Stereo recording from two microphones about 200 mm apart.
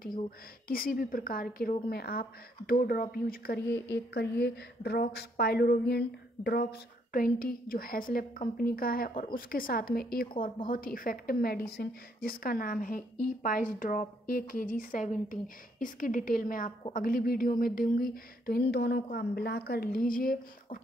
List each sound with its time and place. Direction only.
0.7 s a woman's voice: 45° left (ahead or behind)